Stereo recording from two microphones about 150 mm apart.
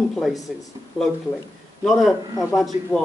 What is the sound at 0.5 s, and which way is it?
Speech, centre (ahead or behind).